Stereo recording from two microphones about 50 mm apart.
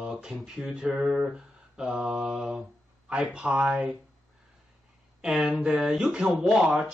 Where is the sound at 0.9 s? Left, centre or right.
Centre.